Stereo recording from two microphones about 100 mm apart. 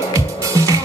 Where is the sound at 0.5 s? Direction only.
35° right (ahead or behind).